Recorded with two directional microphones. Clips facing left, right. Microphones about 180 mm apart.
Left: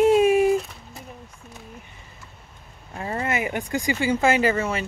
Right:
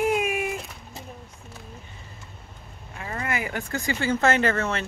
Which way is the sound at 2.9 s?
30° left (ahead or behind).